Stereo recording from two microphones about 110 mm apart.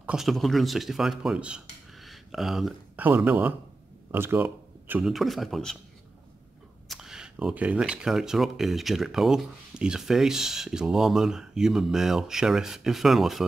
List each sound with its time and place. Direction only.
0.0 s speech: 5° right (ahead or behind)
3.2 s a man's voice: 15° right (ahead or behind)
4.1 s a sound: 20° right (ahead or behind)
5.0 s speech: centre (ahead or behind)
6.9 s speech: 5° right (ahead or behind)